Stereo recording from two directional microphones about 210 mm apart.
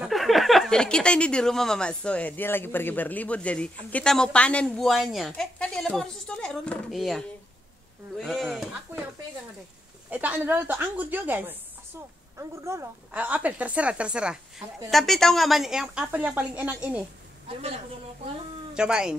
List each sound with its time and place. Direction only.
0.0 s speech: centre (ahead or behind)
10.0 s a woman's voice: 5° right (ahead or behind)
17.5 s a man's voice: 30° right (ahead or behind)
18.8 s speech: 5° right (ahead or behind)